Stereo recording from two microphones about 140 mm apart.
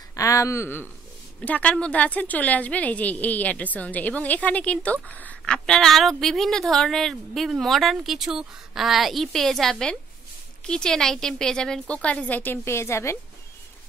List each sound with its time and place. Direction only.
0.1 s a woman's voice: 20° left (ahead or behind)